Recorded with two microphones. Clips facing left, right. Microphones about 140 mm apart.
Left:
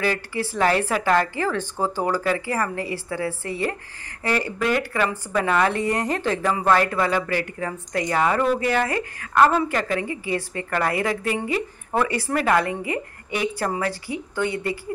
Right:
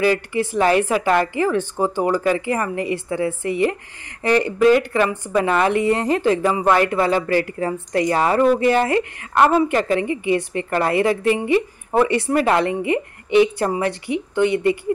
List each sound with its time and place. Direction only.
0.0 s a woman's voice: 20° right (ahead or behind)